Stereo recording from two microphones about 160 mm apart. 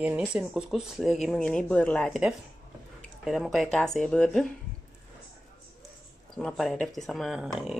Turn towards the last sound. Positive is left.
turn(degrees=-5)  # may be behind; listen again after turning